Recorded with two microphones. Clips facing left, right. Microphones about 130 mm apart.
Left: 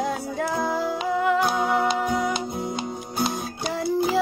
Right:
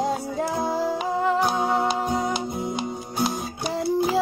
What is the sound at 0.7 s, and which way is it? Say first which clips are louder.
Humming: even; 35° right (ahead or behind).